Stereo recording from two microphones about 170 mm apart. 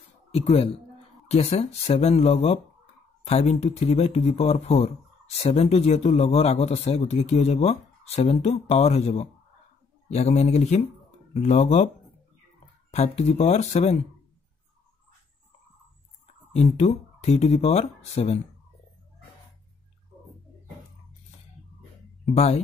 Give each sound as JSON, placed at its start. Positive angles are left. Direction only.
{"t": 0.3, "sound": "speech", "side_deg": 35}
{"t": 12.9, "sound": "speech", "side_deg": 40}
{"t": 16.5, "sound": "speech", "side_deg": 40}
{"t": 22.2, "sound": "speech", "side_deg": 40}